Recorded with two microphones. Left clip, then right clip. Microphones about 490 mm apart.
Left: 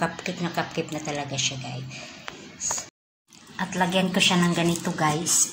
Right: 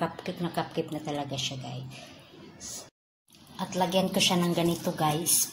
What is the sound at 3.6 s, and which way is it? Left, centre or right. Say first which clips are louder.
A woman's voice: left 3 dB; right.